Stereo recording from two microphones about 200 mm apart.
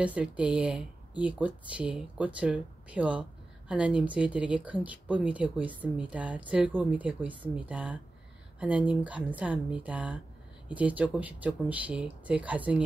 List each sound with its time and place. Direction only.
0.0 s speech: 5° right (ahead or behind)